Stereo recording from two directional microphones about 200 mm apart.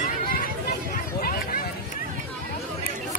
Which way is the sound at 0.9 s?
45° left (ahead or behind).